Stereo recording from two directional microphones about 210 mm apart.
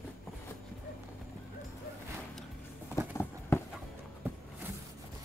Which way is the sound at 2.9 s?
10° left (ahead or behind).